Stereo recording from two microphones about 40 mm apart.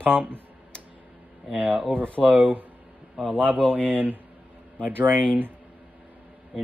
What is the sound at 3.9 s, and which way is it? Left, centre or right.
Speech, right.